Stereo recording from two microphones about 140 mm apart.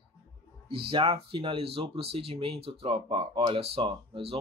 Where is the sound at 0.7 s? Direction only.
40° right (ahead or behind).